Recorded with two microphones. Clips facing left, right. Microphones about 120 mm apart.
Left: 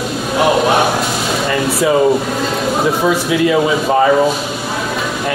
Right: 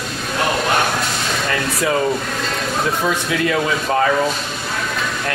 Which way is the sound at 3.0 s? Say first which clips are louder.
Left 6 dB; 15° left (ahead or behind).